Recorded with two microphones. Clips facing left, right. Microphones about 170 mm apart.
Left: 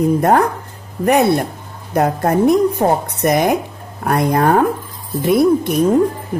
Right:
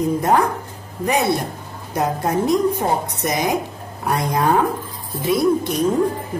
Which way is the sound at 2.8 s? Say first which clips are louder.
Left 6 dB; 50° left (ahead or behind).